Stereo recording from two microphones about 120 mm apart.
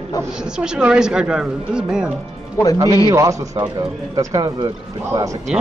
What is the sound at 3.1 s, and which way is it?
A man's voice, 25° right (ahead or behind).